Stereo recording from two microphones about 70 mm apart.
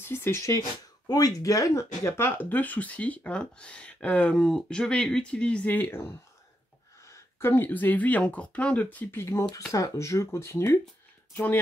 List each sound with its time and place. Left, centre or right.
0.0 s speech: left
0.6 s speech: left
5.9 s speech: left
9.1 s speech: left